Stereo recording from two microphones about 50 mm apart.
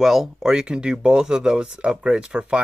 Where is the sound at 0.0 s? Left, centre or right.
Centre.